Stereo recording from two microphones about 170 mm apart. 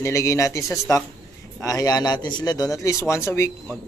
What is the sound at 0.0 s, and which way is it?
A man's voice, 15° left (ahead or behind).